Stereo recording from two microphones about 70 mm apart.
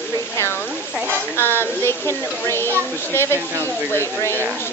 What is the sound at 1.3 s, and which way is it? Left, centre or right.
Speech, left.